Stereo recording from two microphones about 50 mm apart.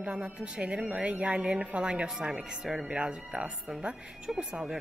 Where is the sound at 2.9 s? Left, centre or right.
Right.